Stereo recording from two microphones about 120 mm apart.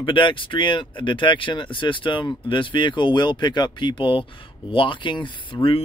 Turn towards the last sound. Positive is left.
turn(degrees=45)  # may be behind; listen again after turning